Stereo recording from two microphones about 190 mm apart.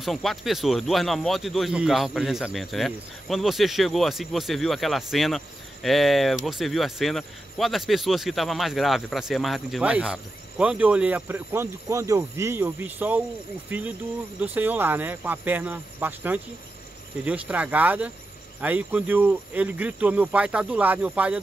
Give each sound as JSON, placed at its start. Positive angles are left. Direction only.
{"t": 0.0, "sound": "speech", "side_deg": 0}